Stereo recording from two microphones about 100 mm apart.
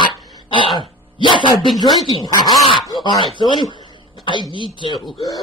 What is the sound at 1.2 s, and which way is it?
Speech, 50° left (ahead or behind).